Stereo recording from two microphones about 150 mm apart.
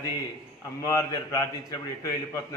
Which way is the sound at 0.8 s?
20° left (ahead or behind).